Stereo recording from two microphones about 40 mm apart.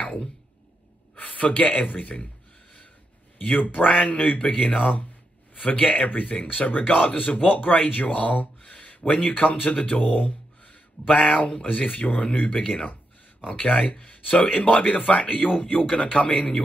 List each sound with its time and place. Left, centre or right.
0.0 s a sound: left
1.9 s a man's voice: left
3.3 s a man's voice: left
16.2 s a man's voice: left